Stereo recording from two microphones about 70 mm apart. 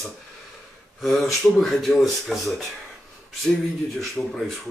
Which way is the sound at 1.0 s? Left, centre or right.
Centre.